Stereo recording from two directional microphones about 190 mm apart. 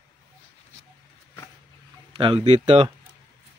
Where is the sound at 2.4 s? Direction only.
35° right (ahead or behind).